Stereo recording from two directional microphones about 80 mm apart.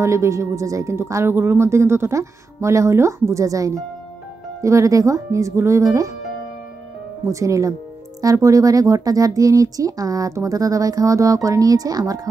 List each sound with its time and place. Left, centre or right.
0.0 s speech: right
7.2 s speech: right